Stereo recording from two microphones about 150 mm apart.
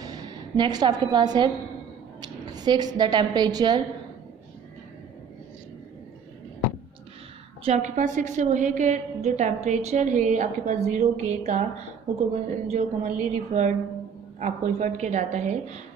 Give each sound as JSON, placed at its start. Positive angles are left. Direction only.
{"t": 0.0, "sound": "a woman's voice", "side_deg": -25}
{"t": 7.6, "sound": "a woman's voice", "side_deg": -50}
{"t": 12.6, "sound": "a woman's voice", "side_deg": -45}